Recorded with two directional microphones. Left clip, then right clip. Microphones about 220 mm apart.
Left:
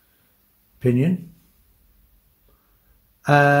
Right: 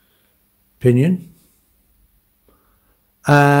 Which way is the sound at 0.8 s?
35° right (ahead or behind).